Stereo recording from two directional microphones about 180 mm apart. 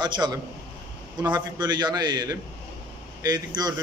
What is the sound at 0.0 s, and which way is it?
Speech, 25° right (ahead or behind).